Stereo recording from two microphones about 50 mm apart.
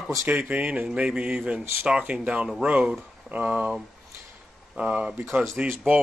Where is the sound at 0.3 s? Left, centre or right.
Right.